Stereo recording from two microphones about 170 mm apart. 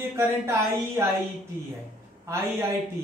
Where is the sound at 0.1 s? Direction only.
15° right (ahead or behind).